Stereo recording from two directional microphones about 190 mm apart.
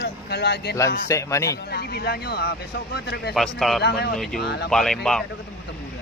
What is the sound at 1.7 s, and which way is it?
Speech, 55° left (ahead or behind).